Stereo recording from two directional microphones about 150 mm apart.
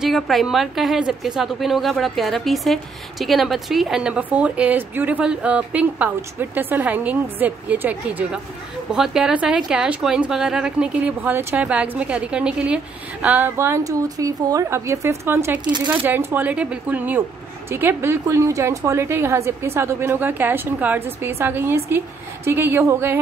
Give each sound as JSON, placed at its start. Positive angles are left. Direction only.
{"t": 0.0, "sound": "a woman's voice", "side_deg": 0}
{"t": 15.6, "sound": "speech", "side_deg": -30}
{"t": 15.9, "sound": "speech", "side_deg": -15}